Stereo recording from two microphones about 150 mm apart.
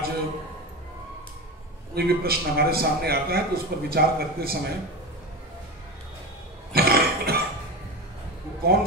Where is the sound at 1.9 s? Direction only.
90° right.